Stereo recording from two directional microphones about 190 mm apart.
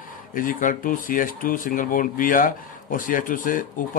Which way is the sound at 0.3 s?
45° left (ahead or behind).